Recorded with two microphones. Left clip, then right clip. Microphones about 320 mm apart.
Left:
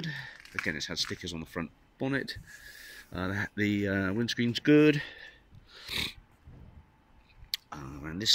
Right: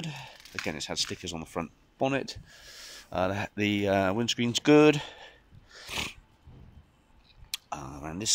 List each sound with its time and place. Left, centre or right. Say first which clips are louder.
0.0 s speech: left 2 dB; centre
7.5 s speech: right 1 dB; centre